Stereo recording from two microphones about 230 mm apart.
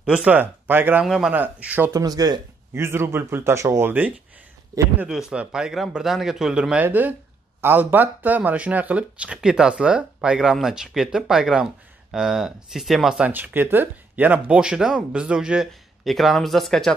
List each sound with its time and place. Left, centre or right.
0.0 s speech: centre